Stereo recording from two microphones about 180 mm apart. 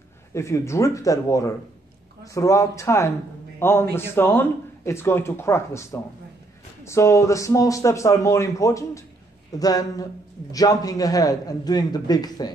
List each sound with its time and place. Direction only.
0.3 s a man's voice: 15° left (ahead or behind)